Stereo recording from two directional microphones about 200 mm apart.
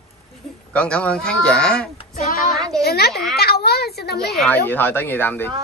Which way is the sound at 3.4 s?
50° left (ahead or behind).